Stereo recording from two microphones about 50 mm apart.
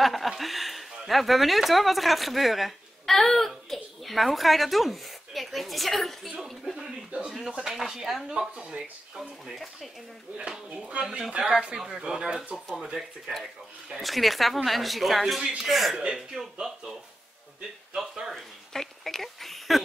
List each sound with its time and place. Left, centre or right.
0.0 s speech: centre
6.6 s a sound: centre
7.2 s speech: centre
8.3 s speech: centre
9.5 s speech: centre
12.5 s speech: centre
13.9 s speech: centre
16.3 s speech: centre
17.9 s speech: centre
18.3 s speech: centre